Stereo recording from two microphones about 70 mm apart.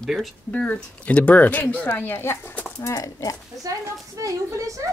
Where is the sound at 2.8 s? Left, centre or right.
Left.